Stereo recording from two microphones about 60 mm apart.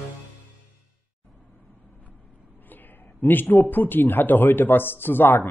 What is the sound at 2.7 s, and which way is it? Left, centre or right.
Speech, left.